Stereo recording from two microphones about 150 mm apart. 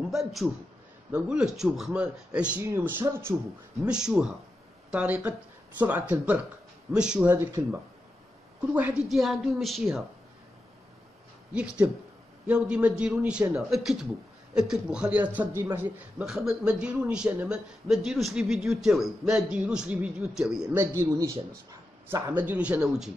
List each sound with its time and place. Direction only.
0.1 s a man's voice: centre (ahead or behind)
3.8 s a man's voice: 5° right (ahead or behind)
11.5 s speech: 10° right (ahead or behind)
16.3 s a man's voice: 5° right (ahead or behind)
20.7 s speech: 15° right (ahead or behind)